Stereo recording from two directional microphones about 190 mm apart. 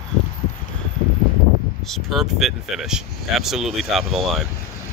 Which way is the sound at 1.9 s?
Centre (ahead or behind).